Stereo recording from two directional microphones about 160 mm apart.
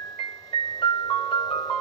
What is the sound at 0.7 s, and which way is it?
Music, 25° left (ahead or behind).